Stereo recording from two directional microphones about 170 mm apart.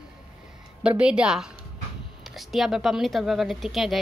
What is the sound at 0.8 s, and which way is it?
Speech, 5° right (ahead or behind).